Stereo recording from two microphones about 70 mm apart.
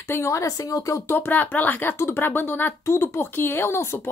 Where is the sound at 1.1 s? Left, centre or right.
Left.